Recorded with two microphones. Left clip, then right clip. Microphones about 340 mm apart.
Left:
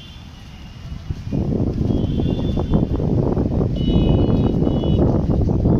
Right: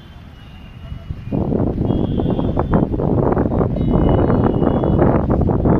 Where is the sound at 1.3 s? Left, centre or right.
Right.